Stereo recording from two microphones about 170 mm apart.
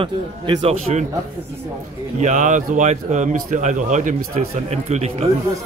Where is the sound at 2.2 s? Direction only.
45° right (ahead or behind).